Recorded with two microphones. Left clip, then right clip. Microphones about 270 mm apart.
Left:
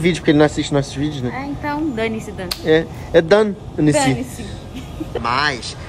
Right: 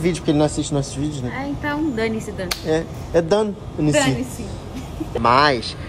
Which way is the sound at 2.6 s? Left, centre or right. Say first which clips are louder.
Left 8 dB; centre.